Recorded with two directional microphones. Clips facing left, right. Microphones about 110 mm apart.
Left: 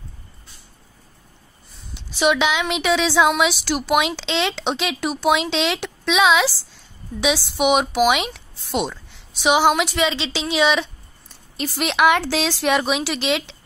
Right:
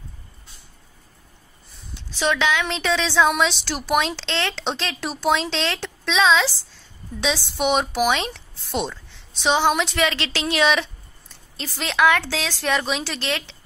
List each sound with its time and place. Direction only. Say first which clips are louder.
2.1 s a woman's voice: left 3 dB; 15° left (ahead or behind)